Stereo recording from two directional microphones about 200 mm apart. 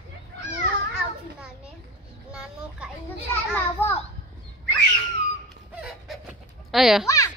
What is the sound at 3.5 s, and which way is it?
Speech, 10° left (ahead or behind).